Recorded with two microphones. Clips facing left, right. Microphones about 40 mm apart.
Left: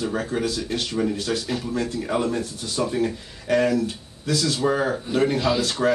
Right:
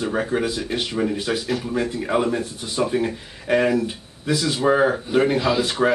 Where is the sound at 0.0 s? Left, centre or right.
Right.